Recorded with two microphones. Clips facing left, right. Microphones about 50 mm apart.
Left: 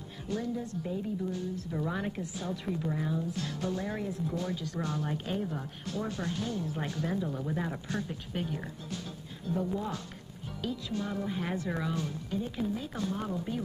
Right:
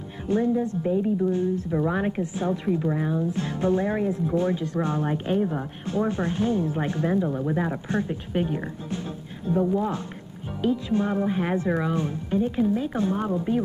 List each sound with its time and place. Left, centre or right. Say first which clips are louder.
0.3 s a woman's voice: right 11 dB; right